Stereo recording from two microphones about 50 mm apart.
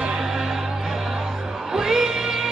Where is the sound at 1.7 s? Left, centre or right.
Centre.